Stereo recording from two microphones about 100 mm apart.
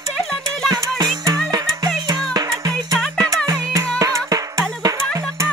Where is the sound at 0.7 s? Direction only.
40° right (ahead or behind).